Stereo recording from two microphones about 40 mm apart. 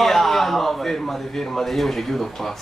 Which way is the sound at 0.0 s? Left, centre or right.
Centre.